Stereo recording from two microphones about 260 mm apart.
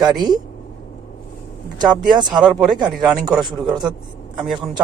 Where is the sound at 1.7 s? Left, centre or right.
Centre.